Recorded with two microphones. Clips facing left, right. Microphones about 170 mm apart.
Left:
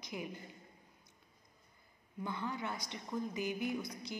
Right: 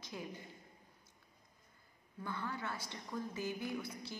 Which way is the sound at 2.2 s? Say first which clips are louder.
Left 3 dB; 20° left (ahead or behind).